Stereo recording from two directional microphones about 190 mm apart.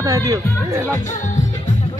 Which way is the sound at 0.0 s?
15° right (ahead or behind).